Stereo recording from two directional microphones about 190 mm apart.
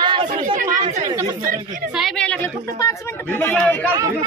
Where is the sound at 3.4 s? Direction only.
10° left (ahead or behind).